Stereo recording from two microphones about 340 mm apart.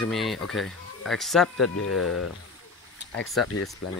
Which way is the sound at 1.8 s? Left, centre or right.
Left.